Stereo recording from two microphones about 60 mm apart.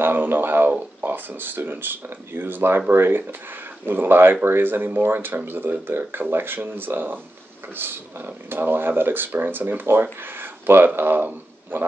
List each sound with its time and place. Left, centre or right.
0.0 s speech: right